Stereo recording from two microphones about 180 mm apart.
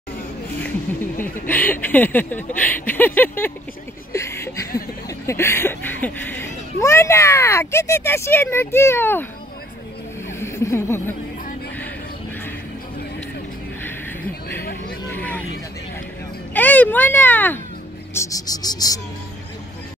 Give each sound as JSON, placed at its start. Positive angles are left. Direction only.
{"t": 1.5, "sound": "speech", "side_deg": 10}
{"t": 4.1, "sound": "chuckle", "side_deg": 15}
{"t": 10.4, "sound": "speech", "side_deg": 15}
{"t": 15.0, "sound": "vehicle", "side_deg": 10}
{"t": 16.5, "sound": "speech", "side_deg": 10}